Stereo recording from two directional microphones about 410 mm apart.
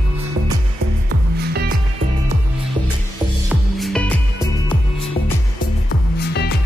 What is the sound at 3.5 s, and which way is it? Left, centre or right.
Music, centre.